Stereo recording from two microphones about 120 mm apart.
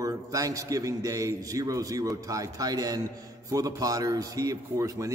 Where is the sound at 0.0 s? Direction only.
30° right (ahead or behind).